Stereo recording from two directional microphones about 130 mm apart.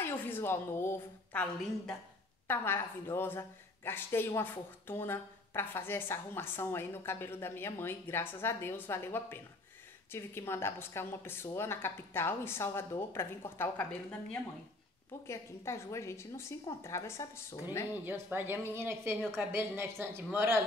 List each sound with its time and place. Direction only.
0.0 s a woman's voice: 15° left (ahead or behind)
15.2 s a woman's voice: 20° left (ahead or behind)
18.0 s a woman's voice: 15° right (ahead or behind)